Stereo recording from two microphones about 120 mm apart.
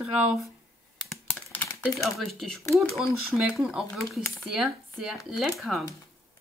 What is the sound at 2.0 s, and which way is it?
Speech, 5° left (ahead or behind).